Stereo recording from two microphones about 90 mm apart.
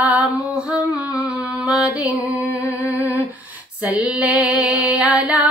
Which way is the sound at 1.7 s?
10° right (ahead or behind).